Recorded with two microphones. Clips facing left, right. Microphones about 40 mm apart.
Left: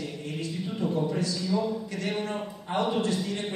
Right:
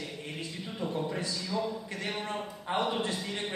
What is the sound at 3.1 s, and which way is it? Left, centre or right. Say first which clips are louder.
Speech: left 5 dB; centre.